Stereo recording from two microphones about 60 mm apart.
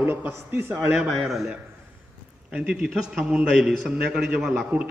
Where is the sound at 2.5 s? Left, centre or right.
Centre.